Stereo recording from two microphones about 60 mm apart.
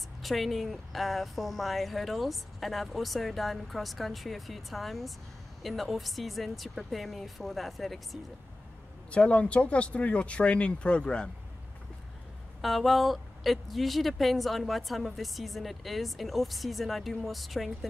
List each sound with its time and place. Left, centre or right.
0.2 s speech: centre
9.1 s speech: centre
12.6 s speech: centre